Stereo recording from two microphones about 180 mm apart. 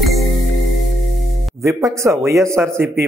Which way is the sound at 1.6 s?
15° right (ahead or behind).